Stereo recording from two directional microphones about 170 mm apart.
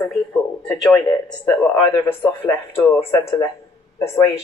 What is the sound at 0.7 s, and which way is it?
Speech, 20° left (ahead or behind).